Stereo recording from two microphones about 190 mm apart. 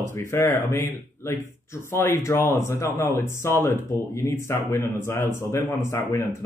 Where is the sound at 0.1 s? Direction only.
15° left (ahead or behind).